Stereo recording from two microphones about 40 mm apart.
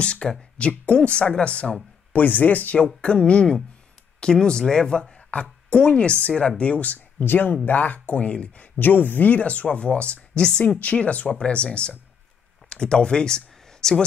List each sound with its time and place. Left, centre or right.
0.0 s speech: left
2.1 s speech: left
2.8 s speech: left
5.3 s a sound: left
5.8 s speech: left
6.6 s speech: left
7.6 s speech: left
8.7 s speech: left; by 14.0 s centre